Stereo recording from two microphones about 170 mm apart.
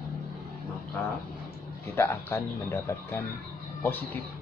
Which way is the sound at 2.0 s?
15° left (ahead or behind).